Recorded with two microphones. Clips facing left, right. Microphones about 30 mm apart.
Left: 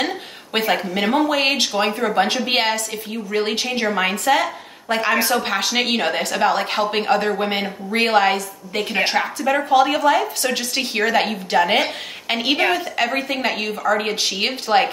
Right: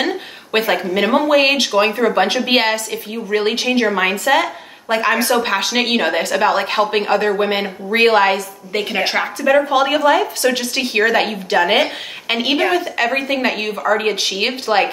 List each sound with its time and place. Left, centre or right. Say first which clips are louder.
0.0 s speech: right 3 dB; centre
1.8 s speech: right 5 dB; right
2.0 s a woman's voice: right 3 dB; centre